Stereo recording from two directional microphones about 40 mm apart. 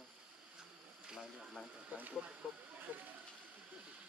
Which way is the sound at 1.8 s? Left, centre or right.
Right.